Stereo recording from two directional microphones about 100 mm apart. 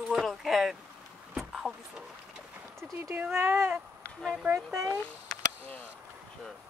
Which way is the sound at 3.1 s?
20° right (ahead or behind).